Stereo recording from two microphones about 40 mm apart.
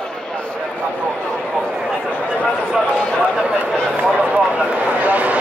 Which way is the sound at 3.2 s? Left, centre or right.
Right.